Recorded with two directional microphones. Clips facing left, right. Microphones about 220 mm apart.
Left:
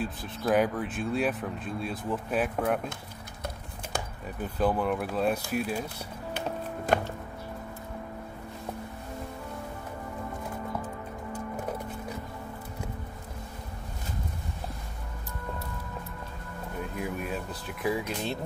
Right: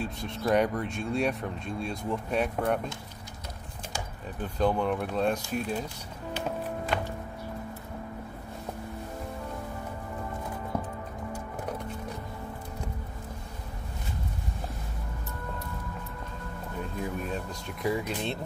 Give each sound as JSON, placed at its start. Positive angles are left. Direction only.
{"t": 0.0, "sound": "speech", "side_deg": 0}
{"t": 4.4, "sound": "speech", "side_deg": 5}
{"t": 6.9, "sound": "music", "side_deg": 45}
{"t": 17.3, "sound": "speech", "side_deg": 5}